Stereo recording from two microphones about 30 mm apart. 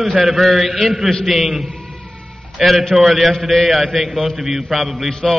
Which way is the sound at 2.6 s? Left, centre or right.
Centre.